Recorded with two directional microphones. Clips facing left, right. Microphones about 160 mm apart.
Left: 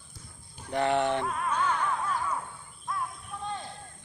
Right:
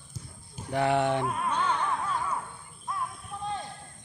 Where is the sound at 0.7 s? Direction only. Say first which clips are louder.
Right 1 dB; 10° right (ahead or behind).